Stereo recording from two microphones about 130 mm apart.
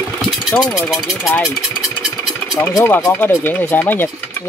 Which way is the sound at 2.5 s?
20° left (ahead or behind).